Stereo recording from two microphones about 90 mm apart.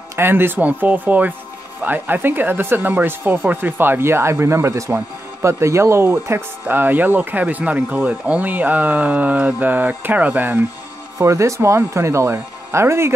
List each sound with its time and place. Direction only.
0.1 s speech: 25° right (ahead or behind)
11.1 s speech: 35° right (ahead or behind)